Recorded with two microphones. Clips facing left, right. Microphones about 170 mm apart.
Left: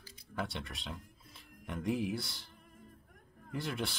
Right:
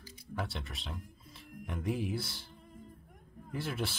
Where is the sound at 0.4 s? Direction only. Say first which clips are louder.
Left 1 dB; centre (ahead or behind).